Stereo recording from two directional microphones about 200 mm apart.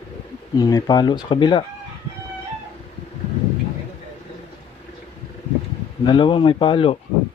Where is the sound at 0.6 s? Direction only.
20° left (ahead or behind).